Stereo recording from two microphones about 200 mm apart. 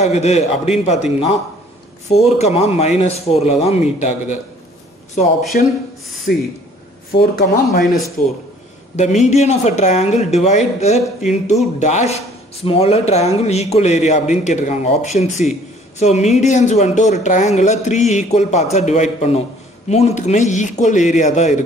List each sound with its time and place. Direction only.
0.0 s speech: 35° left (ahead or behind)
5.5 s speech: 45° left (ahead or behind)
6.3 s speech: 55° left (ahead or behind)
8.9 s speech: 35° left (ahead or behind)